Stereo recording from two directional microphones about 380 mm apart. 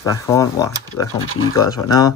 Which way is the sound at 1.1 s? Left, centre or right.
Left.